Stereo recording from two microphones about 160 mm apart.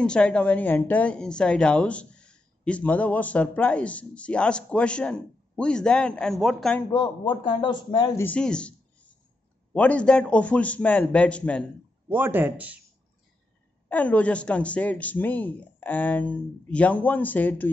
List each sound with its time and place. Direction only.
0.0 s a woman's voice: 5° left (ahead or behind)
6.9 s a man's voice: 30° left (ahead or behind)
8.2 s a woman's voice: 10° left (ahead or behind)
9.8 s a woman's voice: 10° left (ahead or behind)
12.1 s speech: 10° right (ahead or behind)
13.8 s a woman's voice: 10° left (ahead or behind)